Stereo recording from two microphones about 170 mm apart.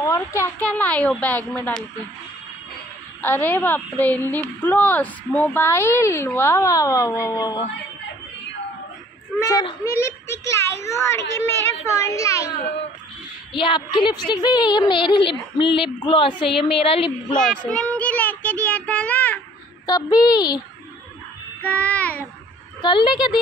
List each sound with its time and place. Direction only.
0.0 s a woman's voice: 15° left (ahead or behind)
3.2 s a woman's voice: 10° left (ahead or behind)
9.9 s a woman's voice: 15° left (ahead or behind)
13.5 s a woman's voice: 30° left (ahead or behind)
17.4 s child singing: 5° left (ahead or behind)
19.9 s a woman's voice: 25° left (ahead or behind)
21.6 s child singing: 10° left (ahead or behind)
22.8 s a woman's voice: 25° left (ahead or behind)